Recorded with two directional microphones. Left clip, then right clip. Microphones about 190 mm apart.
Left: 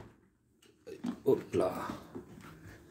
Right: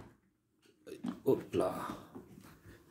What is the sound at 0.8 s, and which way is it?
Pig, 25° right (ahead or behind).